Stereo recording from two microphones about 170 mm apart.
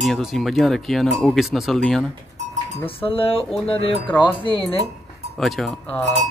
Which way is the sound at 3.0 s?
35° left (ahead or behind).